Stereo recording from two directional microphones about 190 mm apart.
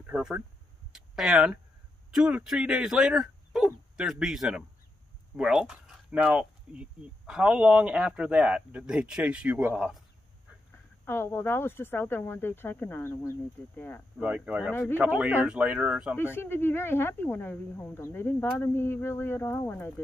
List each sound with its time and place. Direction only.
0.0 s speech: 5° right (ahead or behind)
11.1 s speech: 10° left (ahead or behind)
14.2 s speech: 5° right (ahead or behind)
14.7 s speech: 10° left (ahead or behind)
15.0 s speech: 10° right (ahead or behind)
16.2 s speech: 10° left (ahead or behind)